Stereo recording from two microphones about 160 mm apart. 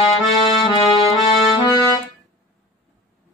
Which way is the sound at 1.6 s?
20° left (ahead or behind).